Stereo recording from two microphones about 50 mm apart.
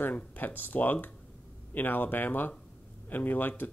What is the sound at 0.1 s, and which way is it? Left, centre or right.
Speech, left.